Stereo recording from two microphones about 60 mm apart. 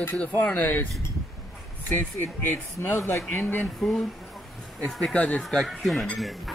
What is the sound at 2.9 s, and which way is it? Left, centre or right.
Speech, left.